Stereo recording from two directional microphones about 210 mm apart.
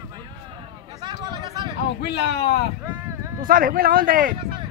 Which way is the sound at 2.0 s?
50° left (ahead or behind).